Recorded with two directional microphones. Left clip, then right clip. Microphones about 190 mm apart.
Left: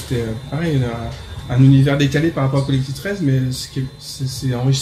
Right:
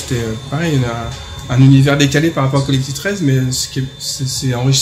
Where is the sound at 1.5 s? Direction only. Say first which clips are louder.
Right 3 dB; 20° right (ahead or behind).